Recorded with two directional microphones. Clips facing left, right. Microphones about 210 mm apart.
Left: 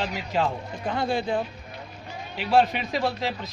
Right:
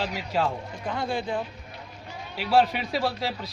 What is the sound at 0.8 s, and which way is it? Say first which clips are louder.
Speech: left 3 dB; 30° left (ahead or behind).